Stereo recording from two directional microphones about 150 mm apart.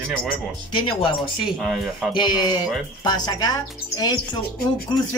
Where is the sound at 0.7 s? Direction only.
35° left (ahead or behind).